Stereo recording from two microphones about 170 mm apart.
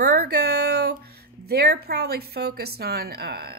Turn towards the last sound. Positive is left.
turn(degrees=-70)  # may be behind; listen again after turning